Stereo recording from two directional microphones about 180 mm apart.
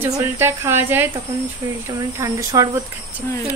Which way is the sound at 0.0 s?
15° right (ahead or behind).